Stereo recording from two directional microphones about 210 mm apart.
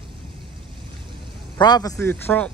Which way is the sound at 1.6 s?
20° left (ahead or behind).